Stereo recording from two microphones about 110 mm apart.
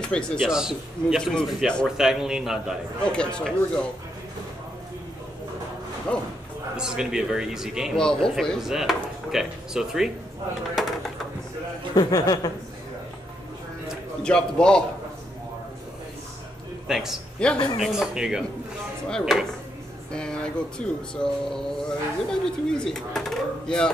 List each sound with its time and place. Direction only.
0.0 s speech: 5° left (ahead or behind)
0.5 s a man's voice: 5° right (ahead or behind)
1.2 s speech: 5° left (ahead or behind)
1.9 s speech: 5° right (ahead or behind)
3.0 s speech: 10° left (ahead or behind)
6.1 s speech: 10° left (ahead or behind)
6.8 s speech: 5° right (ahead or behind)
7.9 s speech: 5° left (ahead or behind)
11.9 s a man's voice: 35° left (ahead or behind)
14.2 s speech: 5° left (ahead or behind)
16.8 s a man's voice: 5° right (ahead or behind)
17.4 s speech: 10° left (ahead or behind)
17.8 s speech: 5° right (ahead or behind)